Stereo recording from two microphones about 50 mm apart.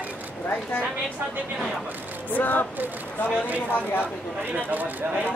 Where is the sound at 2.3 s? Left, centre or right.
Left.